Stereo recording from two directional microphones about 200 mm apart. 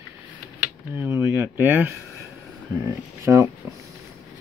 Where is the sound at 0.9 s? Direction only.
10° right (ahead or behind).